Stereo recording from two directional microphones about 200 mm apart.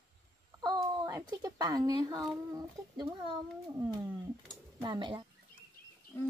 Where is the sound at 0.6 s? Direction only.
20° right (ahead or behind).